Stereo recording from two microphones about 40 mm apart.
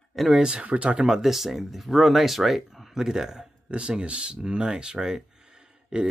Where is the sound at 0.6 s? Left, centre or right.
Right.